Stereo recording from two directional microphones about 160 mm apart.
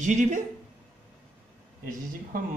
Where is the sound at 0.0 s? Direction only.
50° right (ahead or behind).